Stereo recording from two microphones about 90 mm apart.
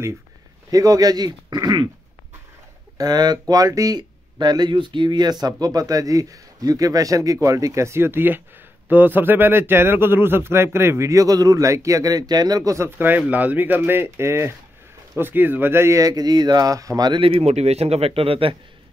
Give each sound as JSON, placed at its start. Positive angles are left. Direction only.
{"t": 0.7, "sound": "speech", "side_deg": -40}
{"t": 3.0, "sound": "a man's voice", "side_deg": -50}
{"t": 12.8, "sound": "a man's voice", "side_deg": -25}
{"t": 16.0, "sound": "speech", "side_deg": -45}
{"t": 17.1, "sound": "speech", "side_deg": -90}